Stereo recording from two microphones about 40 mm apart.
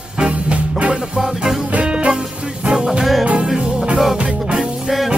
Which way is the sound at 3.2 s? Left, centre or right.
Right.